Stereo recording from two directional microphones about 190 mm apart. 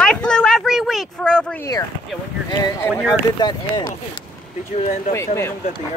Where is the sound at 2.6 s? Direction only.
15° left (ahead or behind).